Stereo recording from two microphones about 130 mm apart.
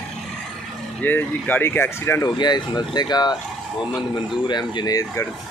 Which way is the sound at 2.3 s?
35° left (ahead or behind).